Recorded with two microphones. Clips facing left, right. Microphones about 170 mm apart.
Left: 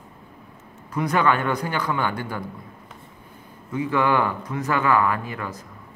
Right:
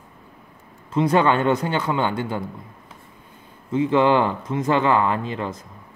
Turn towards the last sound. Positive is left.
turn(degrees=-25)  # may be behind; listen again after turning